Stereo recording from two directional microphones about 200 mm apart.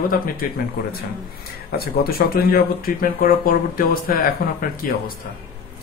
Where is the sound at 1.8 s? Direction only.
50° left (ahead or behind).